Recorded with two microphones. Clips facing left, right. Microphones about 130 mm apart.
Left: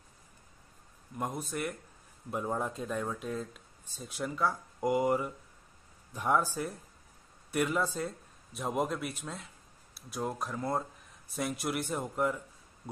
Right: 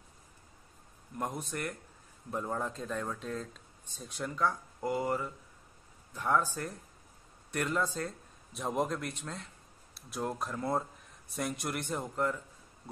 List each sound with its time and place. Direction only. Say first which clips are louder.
1.1 s speech: left 1 dB; centre (ahead or behind)